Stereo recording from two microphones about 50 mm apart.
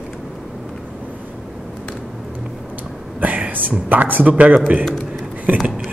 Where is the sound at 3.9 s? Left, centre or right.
Right.